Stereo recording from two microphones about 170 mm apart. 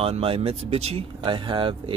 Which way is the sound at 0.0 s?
35° right (ahead or behind).